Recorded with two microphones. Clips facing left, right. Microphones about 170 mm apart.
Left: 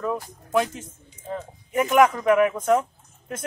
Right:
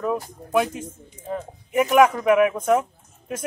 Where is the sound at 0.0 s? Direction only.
10° right (ahead or behind).